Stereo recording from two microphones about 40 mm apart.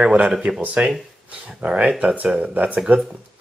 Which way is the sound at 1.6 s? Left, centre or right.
Right.